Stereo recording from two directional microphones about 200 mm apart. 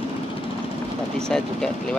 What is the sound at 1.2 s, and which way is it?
Speech, 5° left (ahead or behind).